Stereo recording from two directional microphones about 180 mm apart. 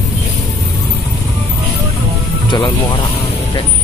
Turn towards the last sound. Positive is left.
turn(degrees=20)  # may be behind; listen again after turning